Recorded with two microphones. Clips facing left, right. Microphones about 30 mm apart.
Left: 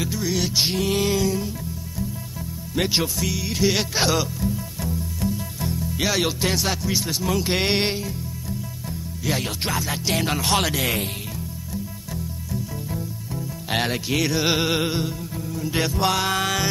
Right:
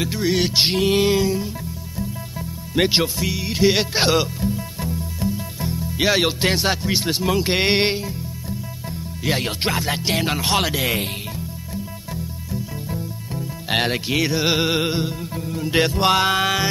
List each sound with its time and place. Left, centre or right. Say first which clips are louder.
0.1 s music: right 4 dB; right
0.7 s speech: right 4 dB; right
2.7 s speech: right 4 dB; right
5.2 s music: right 2 dB; centre
5.8 s speech: right 5 dB; right
7.2 s speech: right 3 dB; right
9.2 s music: right 4 dB; right
10.1 s speech: even; centre
11.7 s music: right 1 dB; centre
14.2 s speech: right 1 dB; centre
15.3 s music: right 6 dB; right